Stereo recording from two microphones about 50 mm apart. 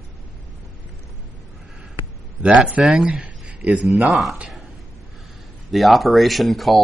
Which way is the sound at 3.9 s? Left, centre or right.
Centre.